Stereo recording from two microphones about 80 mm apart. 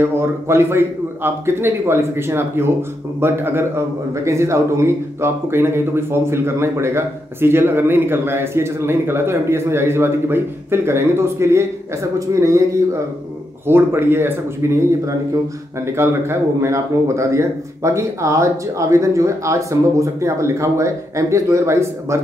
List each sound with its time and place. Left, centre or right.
0.0 s a man's voice: right
13.7 s a man's voice: right